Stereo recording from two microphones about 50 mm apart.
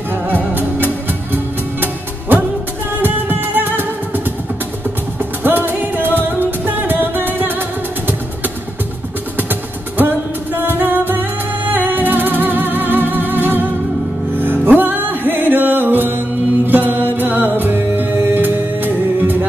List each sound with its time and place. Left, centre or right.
0.1 s music: right
5.4 s music: right
9.4 s music: right